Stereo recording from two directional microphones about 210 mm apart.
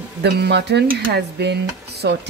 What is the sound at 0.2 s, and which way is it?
Speech, 50° right (ahead or behind).